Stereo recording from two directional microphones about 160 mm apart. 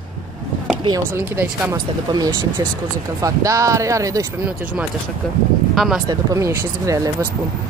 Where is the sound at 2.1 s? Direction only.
25° right (ahead or behind).